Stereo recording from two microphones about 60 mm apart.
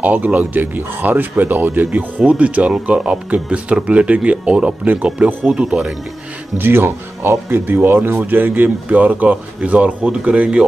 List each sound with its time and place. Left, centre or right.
0.0 s speech: right
6.6 s speech: right; by 10.6 s centre